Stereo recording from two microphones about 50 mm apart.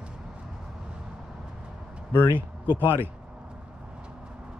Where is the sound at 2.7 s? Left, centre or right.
Left.